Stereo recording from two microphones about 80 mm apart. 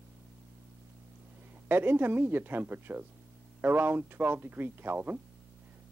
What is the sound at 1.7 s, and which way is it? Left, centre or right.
Speech, right.